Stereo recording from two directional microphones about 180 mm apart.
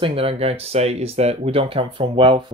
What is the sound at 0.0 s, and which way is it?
Speech, 30° right (ahead or behind).